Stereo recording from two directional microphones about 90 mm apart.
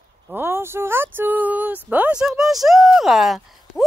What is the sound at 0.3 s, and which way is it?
Speech, 25° right (ahead or behind).